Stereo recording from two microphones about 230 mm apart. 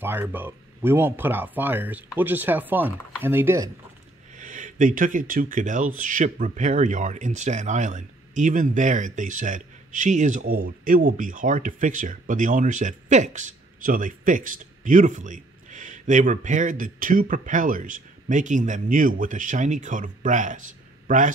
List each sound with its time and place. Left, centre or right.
0.0 s speech: centre
4.4 s speech: right